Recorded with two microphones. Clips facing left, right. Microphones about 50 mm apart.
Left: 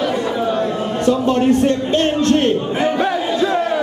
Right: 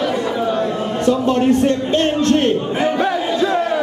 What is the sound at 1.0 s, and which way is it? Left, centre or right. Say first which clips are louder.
Speech: even; centre.